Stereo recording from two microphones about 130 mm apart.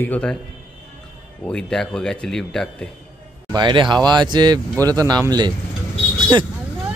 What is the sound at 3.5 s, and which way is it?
Speech, 35° right (ahead or behind).